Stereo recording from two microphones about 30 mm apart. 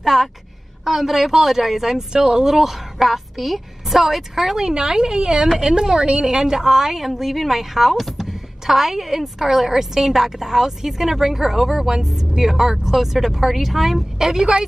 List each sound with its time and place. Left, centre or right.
0.0 s a woman's voice: centre
2.1 s a woman's voice: right
2.5 s a woman's voice: centre
4.6 s a woman's voice: right